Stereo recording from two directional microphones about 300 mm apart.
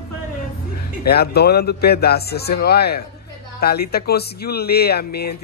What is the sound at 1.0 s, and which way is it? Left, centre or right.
Speech, left.